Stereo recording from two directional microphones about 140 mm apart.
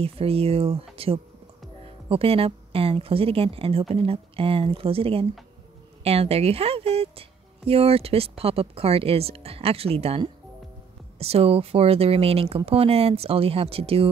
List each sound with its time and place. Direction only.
0.0 s speech: 45° right (ahead or behind)